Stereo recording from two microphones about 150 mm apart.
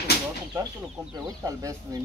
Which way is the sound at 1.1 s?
20° right (ahead or behind).